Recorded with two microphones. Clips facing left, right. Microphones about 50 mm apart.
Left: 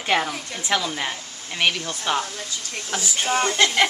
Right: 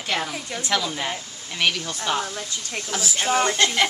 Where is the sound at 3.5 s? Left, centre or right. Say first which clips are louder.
Left 2 dB; centre.